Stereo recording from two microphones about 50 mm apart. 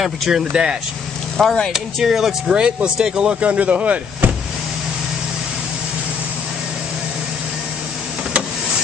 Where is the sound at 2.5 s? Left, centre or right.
Centre.